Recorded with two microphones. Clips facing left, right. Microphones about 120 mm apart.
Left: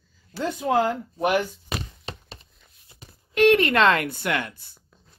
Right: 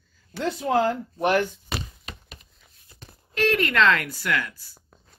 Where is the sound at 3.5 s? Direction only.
30° left (ahead or behind).